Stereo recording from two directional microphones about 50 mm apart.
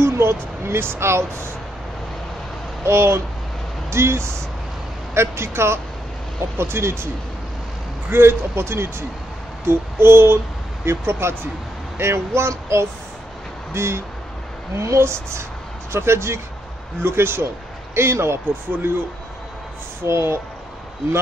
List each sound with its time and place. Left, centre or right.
0.0 s speech: right
2.8 s a man's voice: right
8.1 s a man's voice: right
14.8 s a man's voice: right